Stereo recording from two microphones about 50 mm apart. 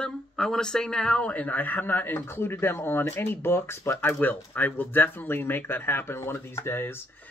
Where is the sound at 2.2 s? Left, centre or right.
Left.